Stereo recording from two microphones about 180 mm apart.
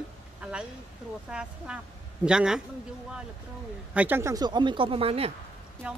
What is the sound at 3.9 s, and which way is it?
Speech, 10° right (ahead or behind).